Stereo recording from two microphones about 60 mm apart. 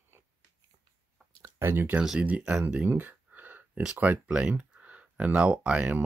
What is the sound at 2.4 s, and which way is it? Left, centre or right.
Speech, centre.